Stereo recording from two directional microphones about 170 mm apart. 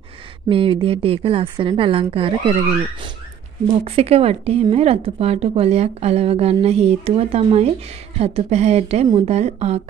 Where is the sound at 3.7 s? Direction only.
35° right (ahead or behind).